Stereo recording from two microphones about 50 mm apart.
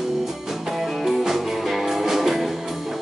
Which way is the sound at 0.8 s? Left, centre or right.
Centre.